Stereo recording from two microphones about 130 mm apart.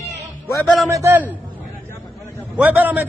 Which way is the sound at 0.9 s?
20° right (ahead or behind).